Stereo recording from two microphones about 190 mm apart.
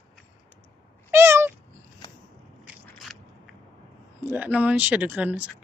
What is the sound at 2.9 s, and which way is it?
Biting, centre (ahead or behind).